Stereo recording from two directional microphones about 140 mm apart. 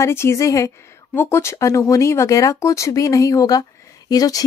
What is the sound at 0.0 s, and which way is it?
A woman's voice, 20° left (ahead or behind).